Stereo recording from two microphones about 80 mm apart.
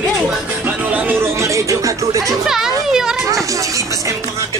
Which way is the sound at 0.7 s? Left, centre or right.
Centre.